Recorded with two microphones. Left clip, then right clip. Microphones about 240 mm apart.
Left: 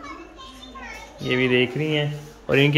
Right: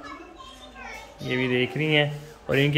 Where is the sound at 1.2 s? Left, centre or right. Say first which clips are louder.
Left 5 dB; centre.